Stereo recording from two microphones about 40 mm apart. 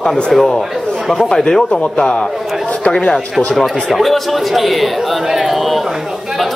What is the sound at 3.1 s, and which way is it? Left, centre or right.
Speech, centre.